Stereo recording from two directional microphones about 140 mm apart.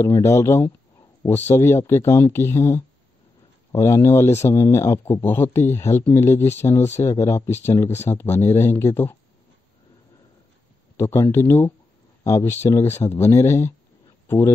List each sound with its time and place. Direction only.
0.0 s speech: 20° left (ahead or behind)
11.0 s speech: 20° left (ahead or behind)